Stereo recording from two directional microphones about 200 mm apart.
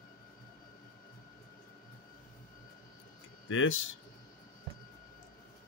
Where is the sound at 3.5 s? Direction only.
75° left (ahead or behind).